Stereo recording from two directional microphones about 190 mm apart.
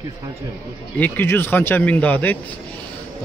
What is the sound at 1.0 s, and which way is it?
Speech, 10° left (ahead or behind).